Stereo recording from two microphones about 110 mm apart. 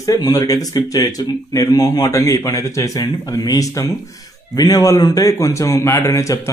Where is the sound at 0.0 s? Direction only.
30° left (ahead or behind).